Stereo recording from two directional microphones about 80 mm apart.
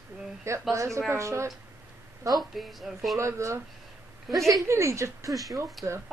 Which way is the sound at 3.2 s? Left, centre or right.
Right.